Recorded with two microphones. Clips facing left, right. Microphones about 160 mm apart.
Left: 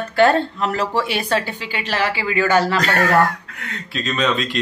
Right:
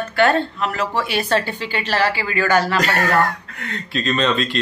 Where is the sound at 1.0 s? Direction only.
25° left (ahead or behind).